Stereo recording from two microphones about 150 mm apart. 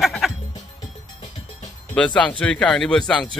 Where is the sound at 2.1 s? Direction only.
10° left (ahead or behind).